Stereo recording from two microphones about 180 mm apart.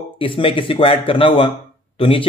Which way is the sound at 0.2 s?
30° left (ahead or behind).